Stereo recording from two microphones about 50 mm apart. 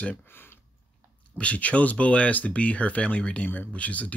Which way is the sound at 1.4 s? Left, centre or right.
Left.